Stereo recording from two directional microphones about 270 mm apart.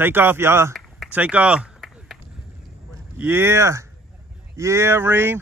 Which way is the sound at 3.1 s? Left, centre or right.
Centre.